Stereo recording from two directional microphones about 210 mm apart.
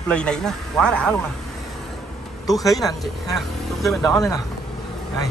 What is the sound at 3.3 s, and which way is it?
Speech, centre (ahead or behind).